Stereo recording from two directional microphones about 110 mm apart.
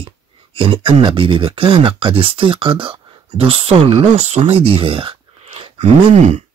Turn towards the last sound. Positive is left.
turn(degrees=-90)